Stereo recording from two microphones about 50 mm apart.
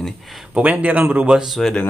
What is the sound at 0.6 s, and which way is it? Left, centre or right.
Speech, right.